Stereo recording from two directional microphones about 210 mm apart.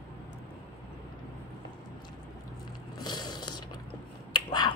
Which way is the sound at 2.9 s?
20° left (ahead or behind).